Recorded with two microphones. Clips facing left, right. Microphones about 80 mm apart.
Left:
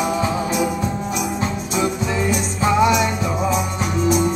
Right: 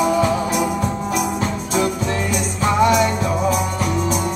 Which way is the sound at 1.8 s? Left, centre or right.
Centre.